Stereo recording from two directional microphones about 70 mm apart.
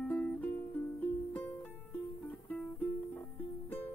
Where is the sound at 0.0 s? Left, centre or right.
Centre.